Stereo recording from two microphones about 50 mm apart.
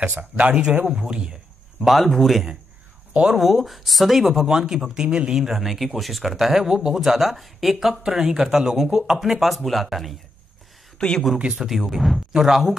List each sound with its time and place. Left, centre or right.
0.2 s a man's voice: right
1.8 s speech: centre
3.1 s a sound: centre
3.3 s speech: centre
8.0 s speech: centre
11.0 s speech: centre
11.3 s a man's voice: centre
11.6 s speech: centre